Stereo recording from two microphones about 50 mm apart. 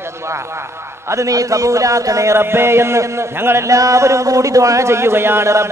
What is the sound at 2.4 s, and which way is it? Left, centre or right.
A man's voice, right.